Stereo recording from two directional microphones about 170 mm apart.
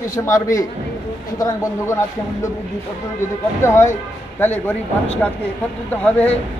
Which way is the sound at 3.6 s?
15° left (ahead or behind).